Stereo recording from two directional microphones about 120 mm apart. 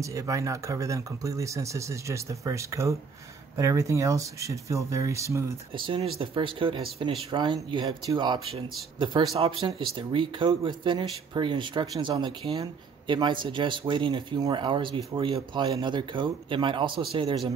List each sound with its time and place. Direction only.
0.0 s speech: 25° right (ahead or behind)
5.8 s speech: 45° right (ahead or behind)